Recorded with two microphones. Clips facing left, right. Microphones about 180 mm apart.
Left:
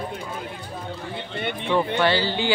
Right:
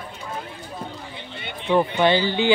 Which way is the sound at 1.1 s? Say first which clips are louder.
Left 7 dB; 55° left (ahead or behind).